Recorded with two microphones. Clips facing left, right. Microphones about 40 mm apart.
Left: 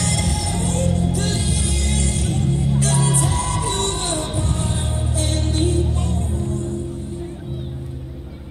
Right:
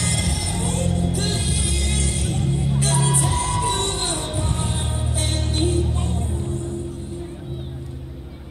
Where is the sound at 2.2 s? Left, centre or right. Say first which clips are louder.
Left 2 dB; centre.